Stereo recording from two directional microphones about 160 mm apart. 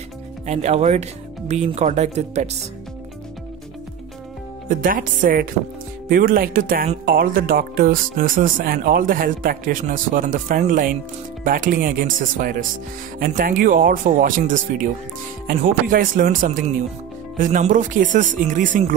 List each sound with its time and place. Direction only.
0.5 s speech: 45° right (ahead or behind)
4.6 s speech: 60° right (ahead or behind)